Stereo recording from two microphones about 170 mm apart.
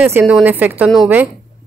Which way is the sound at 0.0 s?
10° right (ahead or behind).